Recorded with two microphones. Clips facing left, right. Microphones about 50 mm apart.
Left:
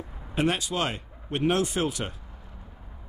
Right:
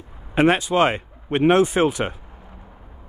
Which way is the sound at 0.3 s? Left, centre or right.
Right.